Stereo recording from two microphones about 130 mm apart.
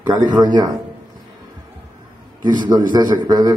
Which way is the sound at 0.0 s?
35° right (ahead or behind).